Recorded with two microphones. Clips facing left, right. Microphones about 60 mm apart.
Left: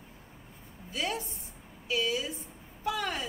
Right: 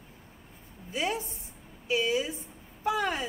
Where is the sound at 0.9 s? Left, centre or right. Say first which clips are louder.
Right 3 dB; right.